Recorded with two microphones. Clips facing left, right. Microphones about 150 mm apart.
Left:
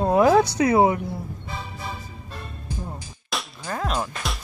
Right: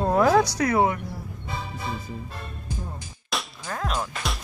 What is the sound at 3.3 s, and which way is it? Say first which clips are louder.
Music: left 1 dB; centre (ahead or behind).